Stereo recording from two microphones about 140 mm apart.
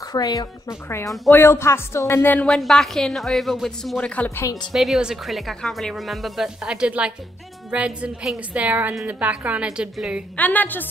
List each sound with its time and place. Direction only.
0.1 s a woman's voice: 25° left (ahead or behind); by 4.5 s 10° left (ahead or behind)
4.7 s a woman's voice: centre (ahead or behind)
10.3 s a woman's voice: 10° left (ahead or behind)